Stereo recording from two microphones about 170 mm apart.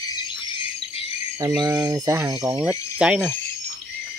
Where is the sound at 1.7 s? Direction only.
20° right (ahead or behind).